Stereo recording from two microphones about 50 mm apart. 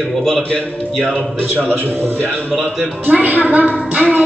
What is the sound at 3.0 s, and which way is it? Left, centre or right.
A woman's voice, right.